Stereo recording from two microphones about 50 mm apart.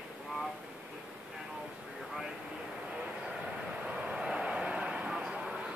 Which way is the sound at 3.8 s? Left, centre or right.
Right.